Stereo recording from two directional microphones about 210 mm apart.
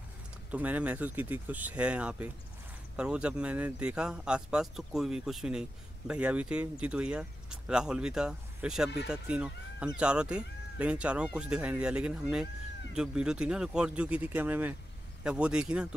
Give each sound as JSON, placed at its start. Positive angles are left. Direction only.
{"t": 0.5, "sound": "speech", "side_deg": -5}